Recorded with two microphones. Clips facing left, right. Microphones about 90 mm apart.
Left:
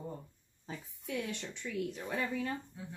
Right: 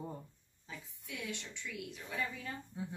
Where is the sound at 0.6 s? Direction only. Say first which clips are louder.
Left 6 dB; 45° left (ahead or behind).